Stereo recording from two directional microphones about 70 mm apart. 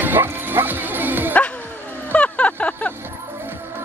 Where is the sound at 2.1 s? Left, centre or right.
Centre.